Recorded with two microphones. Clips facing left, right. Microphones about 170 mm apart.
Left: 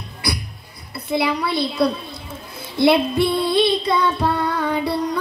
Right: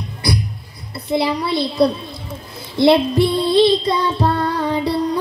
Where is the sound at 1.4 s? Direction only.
20° right (ahead or behind).